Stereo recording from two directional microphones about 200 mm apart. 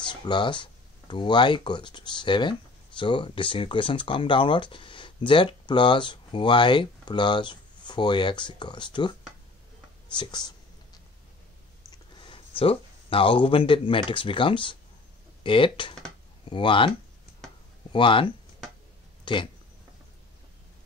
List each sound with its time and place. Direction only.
0.1 s speech: 20° left (ahead or behind)
10.1 s speech: 25° left (ahead or behind)
12.2 s speech: 25° left (ahead or behind)
17.9 s speech: 25° left (ahead or behind)